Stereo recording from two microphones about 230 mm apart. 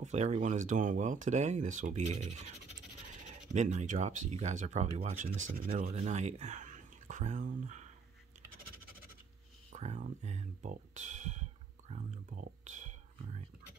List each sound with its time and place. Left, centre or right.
0.0 s speech: right
3.5 s speech: right
9.7 s speech: right
11.9 s a sound: right